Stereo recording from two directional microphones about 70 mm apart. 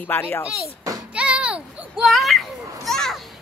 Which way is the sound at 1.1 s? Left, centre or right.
Centre.